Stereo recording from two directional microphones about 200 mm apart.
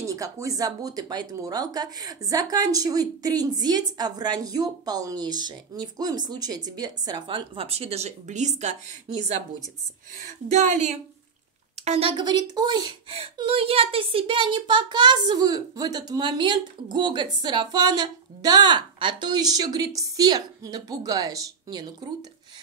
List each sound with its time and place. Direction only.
0.0 s a woman's voice: 15° right (ahead or behind)